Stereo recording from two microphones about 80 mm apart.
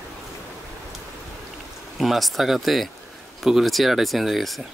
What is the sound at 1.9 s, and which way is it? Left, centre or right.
Speech, centre.